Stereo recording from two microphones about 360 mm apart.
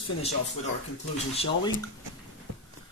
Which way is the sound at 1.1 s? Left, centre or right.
Centre.